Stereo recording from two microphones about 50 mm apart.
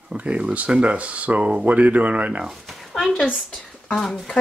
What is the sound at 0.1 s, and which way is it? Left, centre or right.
Speech, right.